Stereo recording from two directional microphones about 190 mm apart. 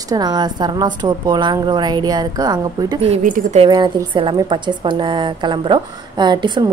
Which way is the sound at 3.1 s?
40° right (ahead or behind).